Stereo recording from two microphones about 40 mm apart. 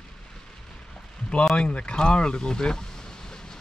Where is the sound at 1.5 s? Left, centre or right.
Left.